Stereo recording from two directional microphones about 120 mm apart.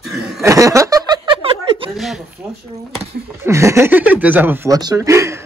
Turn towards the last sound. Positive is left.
turn(degrees=-25)  # may be behind; listen again after turning